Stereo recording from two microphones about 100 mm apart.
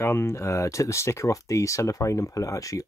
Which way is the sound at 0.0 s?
25° left (ahead or behind).